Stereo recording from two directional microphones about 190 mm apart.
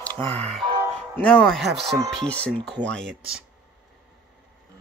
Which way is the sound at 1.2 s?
5° left (ahead or behind).